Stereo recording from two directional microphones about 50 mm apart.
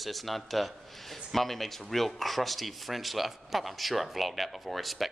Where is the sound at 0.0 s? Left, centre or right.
Centre.